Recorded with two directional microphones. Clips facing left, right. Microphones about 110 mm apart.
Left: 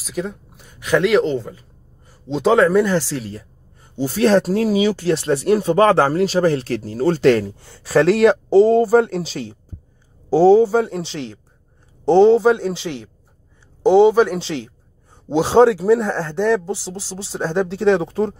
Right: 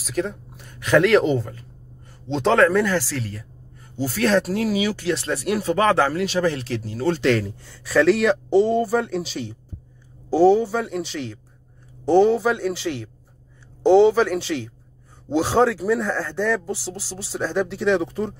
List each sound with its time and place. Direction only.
0.0 s speech: 5° left (ahead or behind)
1.5 s speech: 10° left (ahead or behind); by 7.5 s 40° left (ahead or behind)
7.5 s speech: 25° left (ahead or behind)